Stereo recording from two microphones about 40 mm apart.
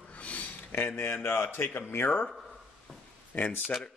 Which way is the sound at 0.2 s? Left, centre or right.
Left.